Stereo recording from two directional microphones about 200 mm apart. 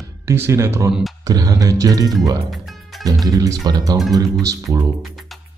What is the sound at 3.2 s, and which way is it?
Speech, 20° right (ahead or behind).